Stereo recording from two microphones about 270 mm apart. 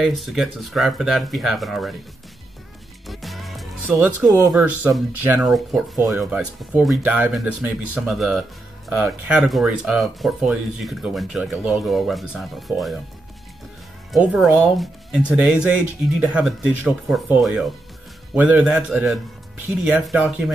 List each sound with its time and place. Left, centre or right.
0.0 s speech: centre
3.1 s music: centre
4.5 s speech: centre
14.1 s speech: centre